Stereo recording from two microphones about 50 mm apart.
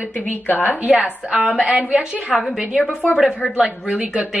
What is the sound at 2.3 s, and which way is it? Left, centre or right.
Speech, centre.